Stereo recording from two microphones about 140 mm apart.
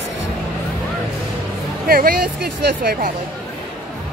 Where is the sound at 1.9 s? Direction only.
90° right.